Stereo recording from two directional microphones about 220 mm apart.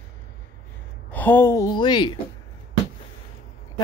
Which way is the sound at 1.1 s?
10° left (ahead or behind).